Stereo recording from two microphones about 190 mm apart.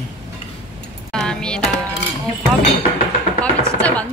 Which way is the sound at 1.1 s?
5° left (ahead or behind).